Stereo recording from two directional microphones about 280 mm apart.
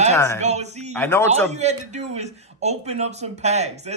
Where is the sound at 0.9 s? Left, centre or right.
Centre.